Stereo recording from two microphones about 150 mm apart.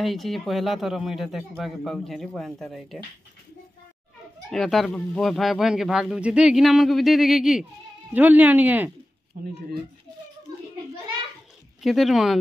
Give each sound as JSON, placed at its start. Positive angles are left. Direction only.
{"t": 0.0, "sound": "speech", "side_deg": 0}
{"t": 4.5, "sound": "speech", "side_deg": 0}
{"t": 9.3, "sound": "speech", "side_deg": -65}
{"t": 11.8, "sound": "speech", "side_deg": 0}